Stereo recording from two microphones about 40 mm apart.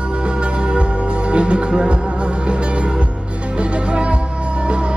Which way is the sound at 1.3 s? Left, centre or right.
Right.